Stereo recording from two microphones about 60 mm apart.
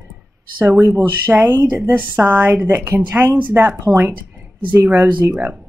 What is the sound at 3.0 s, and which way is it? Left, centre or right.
Speech, right.